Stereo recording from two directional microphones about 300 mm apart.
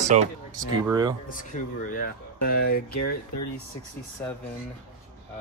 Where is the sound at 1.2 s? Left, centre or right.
Left.